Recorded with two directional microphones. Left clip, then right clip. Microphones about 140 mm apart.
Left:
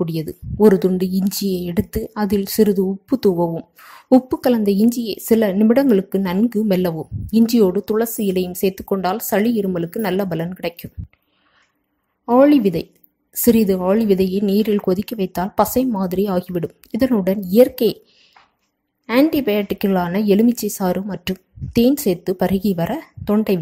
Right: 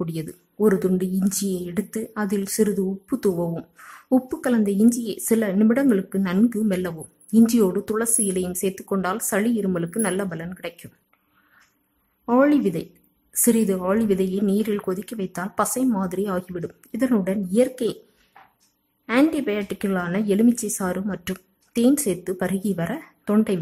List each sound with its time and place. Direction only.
0.0 s speech: 25° left (ahead or behind)
12.3 s a woman's voice: 25° left (ahead or behind)
19.3 s speech: 30° left (ahead or behind)